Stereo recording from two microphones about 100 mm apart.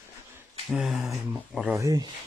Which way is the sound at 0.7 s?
5° right (ahead or behind).